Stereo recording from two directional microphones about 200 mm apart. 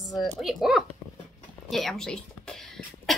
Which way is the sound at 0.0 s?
Centre (ahead or behind).